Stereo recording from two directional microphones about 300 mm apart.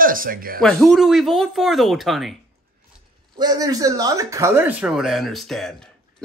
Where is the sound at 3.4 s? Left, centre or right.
Centre.